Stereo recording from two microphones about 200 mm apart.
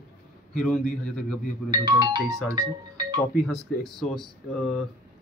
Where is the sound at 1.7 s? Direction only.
25° right (ahead or behind).